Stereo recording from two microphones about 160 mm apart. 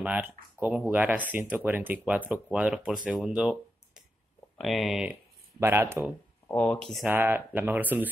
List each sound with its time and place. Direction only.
0.0 s speech: 10° right (ahead or behind)
5.6 s speech: 15° right (ahead or behind)
6.5 s speech: 5° left (ahead or behind)
7.1 s speech: 15° right (ahead or behind)